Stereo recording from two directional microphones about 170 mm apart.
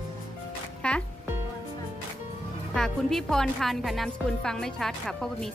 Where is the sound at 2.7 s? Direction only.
5° left (ahead or behind).